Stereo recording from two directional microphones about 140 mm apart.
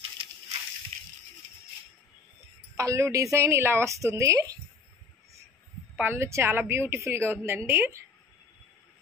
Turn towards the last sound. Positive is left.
turn(degrees=-15)  # may be behind; listen again after turning